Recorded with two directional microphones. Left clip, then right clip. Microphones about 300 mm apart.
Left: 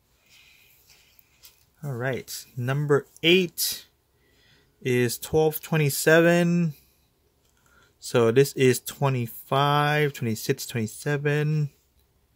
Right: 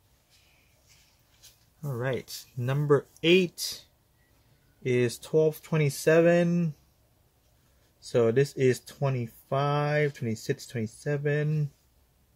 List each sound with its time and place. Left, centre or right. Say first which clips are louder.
1.8 s speech: left 2 dB; centre
4.8 s speech: left 2 dB; left
8.0 s speech: left 4 dB; left